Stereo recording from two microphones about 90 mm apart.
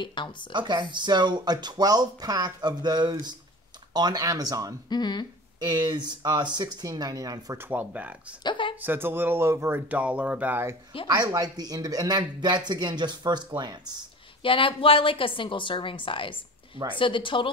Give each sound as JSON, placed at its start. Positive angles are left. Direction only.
{"t": 0.0, "sound": "speech", "side_deg": 65}
{"t": 0.5, "sound": "speech", "side_deg": -55}
{"t": 4.8, "sound": "speech", "side_deg": 50}
{"t": 5.6, "sound": "speech", "side_deg": -50}
{"t": 7.5, "sound": "speech", "side_deg": -25}
{"t": 8.5, "sound": "a sound", "side_deg": 65}
{"t": 8.8, "sound": "speech", "side_deg": -25}
{"t": 11.1, "sound": "speech", "side_deg": -50}
{"t": 14.4, "sound": "a woman's voice", "side_deg": 75}